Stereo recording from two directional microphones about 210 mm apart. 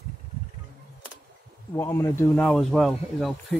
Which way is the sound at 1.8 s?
10° left (ahead or behind).